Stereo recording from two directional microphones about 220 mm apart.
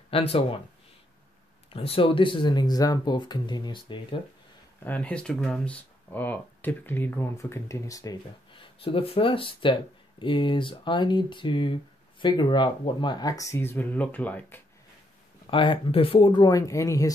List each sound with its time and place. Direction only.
0.1 s speech: 25° left (ahead or behind)
1.7 s speech: 25° left (ahead or behind)
4.8 s speech: 5° left (ahead or behind)
15.5 s speech: 20° left (ahead or behind)